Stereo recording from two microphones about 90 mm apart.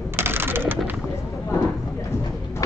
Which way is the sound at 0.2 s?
25° right (ahead or behind).